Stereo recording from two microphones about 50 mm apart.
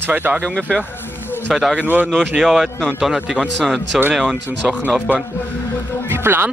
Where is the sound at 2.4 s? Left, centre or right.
Centre.